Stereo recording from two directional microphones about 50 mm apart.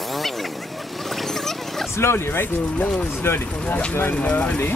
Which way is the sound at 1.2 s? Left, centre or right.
Centre.